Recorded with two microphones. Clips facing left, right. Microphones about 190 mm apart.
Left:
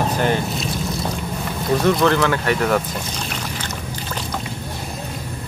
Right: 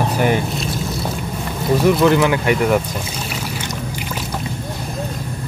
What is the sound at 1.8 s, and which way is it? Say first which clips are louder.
Boat: right 3 dB; 10° right (ahead or behind).